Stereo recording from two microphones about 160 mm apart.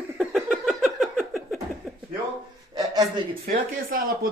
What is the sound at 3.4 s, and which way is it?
Speech, 70° right (ahead or behind).